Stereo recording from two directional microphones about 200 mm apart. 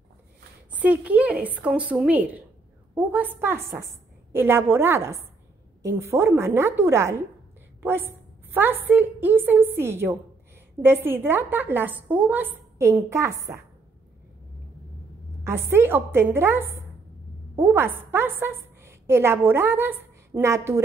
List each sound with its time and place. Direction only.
0.7 s a woman's voice: 5° right (ahead or behind)
15.4 s a woman's voice: 10° right (ahead or behind)